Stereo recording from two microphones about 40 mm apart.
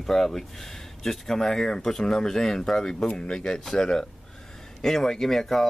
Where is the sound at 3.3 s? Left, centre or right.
Centre.